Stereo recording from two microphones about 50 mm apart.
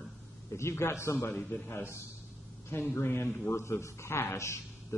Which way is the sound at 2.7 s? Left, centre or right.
Left.